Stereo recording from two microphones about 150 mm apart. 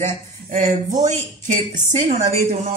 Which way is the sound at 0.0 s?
60° right (ahead or behind).